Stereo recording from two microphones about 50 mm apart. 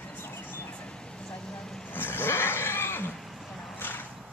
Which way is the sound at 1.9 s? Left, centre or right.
Left.